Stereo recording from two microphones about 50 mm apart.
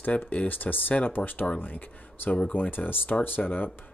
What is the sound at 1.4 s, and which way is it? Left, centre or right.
Speech, left.